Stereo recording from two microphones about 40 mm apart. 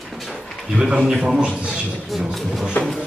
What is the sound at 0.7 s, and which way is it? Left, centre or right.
Speech, right.